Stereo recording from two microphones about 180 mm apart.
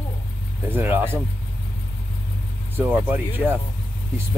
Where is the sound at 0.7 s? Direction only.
10° right (ahead or behind).